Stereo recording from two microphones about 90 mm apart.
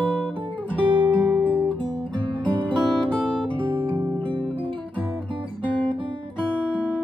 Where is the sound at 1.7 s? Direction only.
65° right (ahead or behind).